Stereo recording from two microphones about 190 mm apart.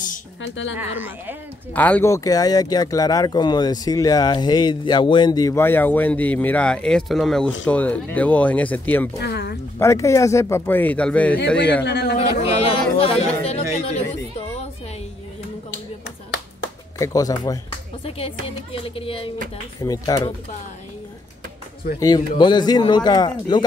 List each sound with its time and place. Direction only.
0.4 s speech: 80° left
0.7 s speech: 10° right (ahead or behind)
1.7 s speech: 10° left (ahead or behind)
9.2 s speech: 60° left (ahead or behind)
9.8 s speech: 15° left (ahead or behind)
11.3 s a man's voice: 65° left (ahead or behind)
12.2 s a sound: 35° left (ahead or behind)
12.9 s chatter: 30° left (ahead or behind)
17.0 s speech: 20° left (ahead or behind)
18.0 s speech: 30° left (ahead or behind)
19.8 s speech: 20° left (ahead or behind)
22.4 s speech: 20° left (ahead or behind)